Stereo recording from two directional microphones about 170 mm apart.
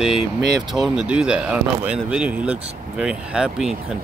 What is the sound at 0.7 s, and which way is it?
Speech, 5° right (ahead or behind).